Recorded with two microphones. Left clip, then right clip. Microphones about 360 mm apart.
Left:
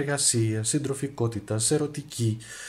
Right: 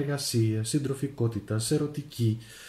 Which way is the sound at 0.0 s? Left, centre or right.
Centre.